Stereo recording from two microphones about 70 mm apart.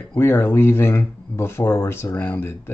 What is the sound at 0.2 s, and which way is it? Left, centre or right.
Speech, left.